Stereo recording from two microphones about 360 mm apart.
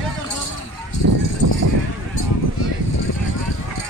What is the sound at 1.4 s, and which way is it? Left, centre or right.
Sheep, right.